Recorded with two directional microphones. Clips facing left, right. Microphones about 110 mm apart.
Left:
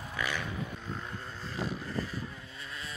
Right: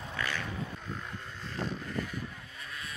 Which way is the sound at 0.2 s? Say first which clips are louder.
Left 1 dB; 15° left (ahead or behind).